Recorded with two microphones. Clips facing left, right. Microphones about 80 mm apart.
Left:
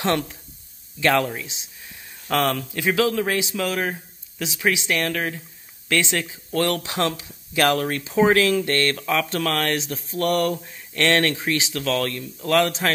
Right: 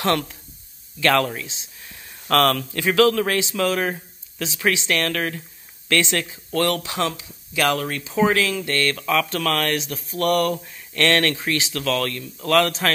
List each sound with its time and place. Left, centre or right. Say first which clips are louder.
0.0 s speech: right 1 dB; left
8.9 s speech: right 1 dB; left